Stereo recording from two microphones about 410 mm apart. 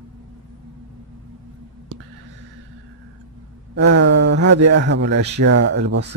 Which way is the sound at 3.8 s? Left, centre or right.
Right.